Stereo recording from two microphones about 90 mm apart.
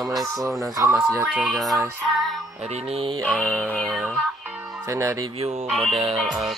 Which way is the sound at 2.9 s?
90° right.